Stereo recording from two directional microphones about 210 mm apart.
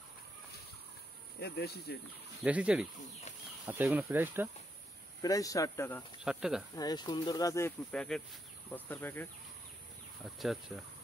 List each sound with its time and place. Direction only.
1.4 s speech: 50° left (ahead or behind)
2.4 s speech: 5° right (ahead or behind)
5.2 s speech: 15° left (ahead or behind)
6.2 s speech: 5° right (ahead or behind)
6.7 s speech: 20° left (ahead or behind)
7.9 s speech: 5° left (ahead or behind)